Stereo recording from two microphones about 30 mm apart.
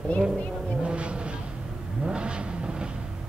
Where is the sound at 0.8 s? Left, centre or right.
Right.